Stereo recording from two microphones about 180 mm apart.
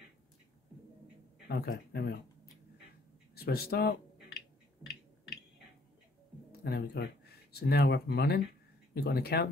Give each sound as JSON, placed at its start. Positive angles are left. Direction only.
{"t": 1.5, "sound": "speech", "side_deg": 60}
{"t": 3.3, "sound": "speech", "side_deg": 60}
{"t": 6.5, "sound": "speech", "side_deg": 65}